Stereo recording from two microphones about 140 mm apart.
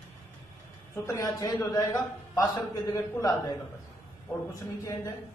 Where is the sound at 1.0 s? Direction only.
25° left (ahead or behind).